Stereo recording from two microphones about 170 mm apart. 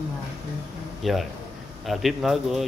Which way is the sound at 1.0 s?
Centre (ahead or behind).